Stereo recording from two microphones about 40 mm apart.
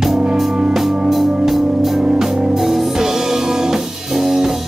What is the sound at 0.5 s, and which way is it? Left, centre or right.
Music, right.